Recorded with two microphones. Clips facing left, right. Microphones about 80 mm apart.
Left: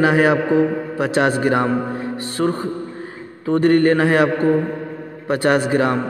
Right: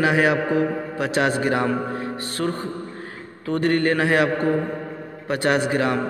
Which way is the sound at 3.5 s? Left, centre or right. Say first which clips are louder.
Left 6 dB; left.